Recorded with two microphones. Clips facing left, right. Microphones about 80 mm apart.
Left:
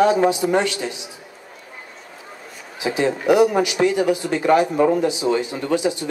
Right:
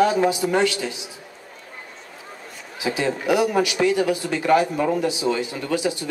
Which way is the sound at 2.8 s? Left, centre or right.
Centre.